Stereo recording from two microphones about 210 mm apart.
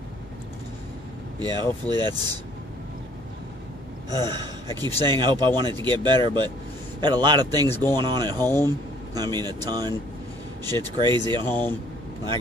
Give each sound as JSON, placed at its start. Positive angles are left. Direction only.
{"t": 1.4, "sound": "speech", "side_deg": -20}
{"t": 4.1, "sound": "speech", "side_deg": -20}
{"t": 8.5, "sound": "speech", "side_deg": 10}
{"t": 9.1, "sound": "speech", "side_deg": -20}
{"t": 11.4, "sound": "speech", "side_deg": 10}